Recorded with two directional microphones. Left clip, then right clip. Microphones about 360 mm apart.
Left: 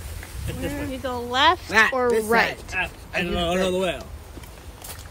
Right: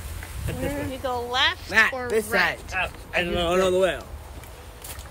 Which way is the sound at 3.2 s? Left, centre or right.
Right.